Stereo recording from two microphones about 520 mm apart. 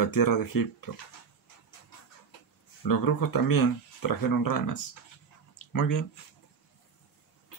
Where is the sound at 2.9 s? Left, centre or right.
Left.